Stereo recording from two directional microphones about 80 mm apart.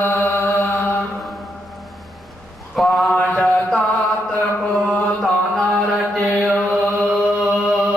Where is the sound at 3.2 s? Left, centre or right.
Centre.